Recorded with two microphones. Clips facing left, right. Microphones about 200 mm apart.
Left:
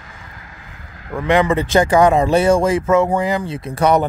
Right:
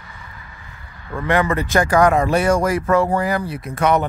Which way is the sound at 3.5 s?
30° left (ahead or behind).